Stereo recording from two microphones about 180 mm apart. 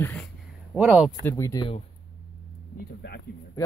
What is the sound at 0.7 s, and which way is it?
Speech, 5° right (ahead or behind).